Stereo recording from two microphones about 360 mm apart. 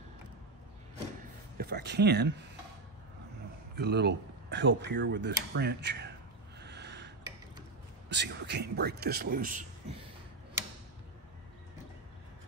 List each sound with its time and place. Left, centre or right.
1.6 s speech: right
3.7 s speech: right
6.6 s a sound: right
8.1 s a man's voice: right